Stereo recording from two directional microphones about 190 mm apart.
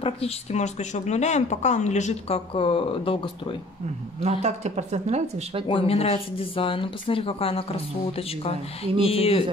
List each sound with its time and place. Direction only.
0.0 s speech: 35° left (ahead or behind)
4.2 s speech: 35° right (ahead or behind)
5.7 s speech: 30° left (ahead or behind)